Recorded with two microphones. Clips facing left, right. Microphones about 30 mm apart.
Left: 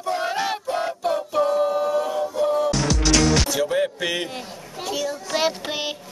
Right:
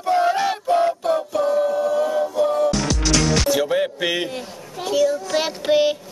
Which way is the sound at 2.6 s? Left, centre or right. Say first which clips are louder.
Right 2 dB; centre.